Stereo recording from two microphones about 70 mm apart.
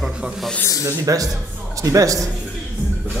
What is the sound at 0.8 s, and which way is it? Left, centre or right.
A man's voice, right.